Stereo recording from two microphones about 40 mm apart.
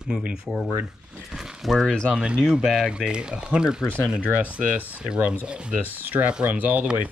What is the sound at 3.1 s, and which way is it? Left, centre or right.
Speech, right.